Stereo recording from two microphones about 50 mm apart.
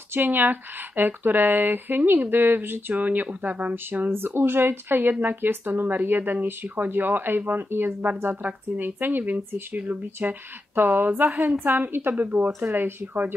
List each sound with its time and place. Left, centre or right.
0.1 s speech: right
2.9 s speech: right
3.7 s speech: right
12.5 s speech: right
13.0 s speech: right